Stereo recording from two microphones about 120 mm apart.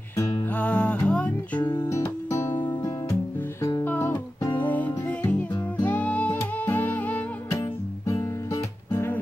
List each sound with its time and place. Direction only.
0.6 s music: 10° left (ahead or behind)
1.6 s music: 35° left (ahead or behind)
1.9 s music: 25° left (ahead or behind)
3.8 s music: 15° left (ahead or behind)
8.9 s music: 15° left (ahead or behind)